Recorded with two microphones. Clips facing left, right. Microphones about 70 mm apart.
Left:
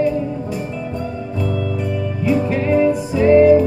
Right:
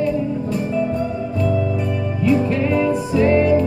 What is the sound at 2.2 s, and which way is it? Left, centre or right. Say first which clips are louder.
Music: even; centre.